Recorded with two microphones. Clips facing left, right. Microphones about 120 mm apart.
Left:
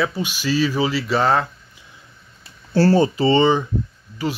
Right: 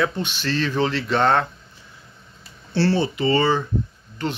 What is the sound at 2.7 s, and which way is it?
Speech, 45° left (ahead or behind).